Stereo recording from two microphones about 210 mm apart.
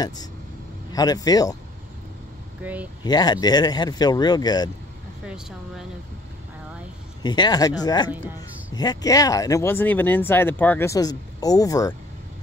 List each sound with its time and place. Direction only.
0.9 s speech: 20° left (ahead or behind)
2.6 s speech: 5° right (ahead or behind)
3.0 s speech: 20° left (ahead or behind)
5.2 s speech: 5° right (ahead or behind)
7.2 s speech: 20° left (ahead or behind)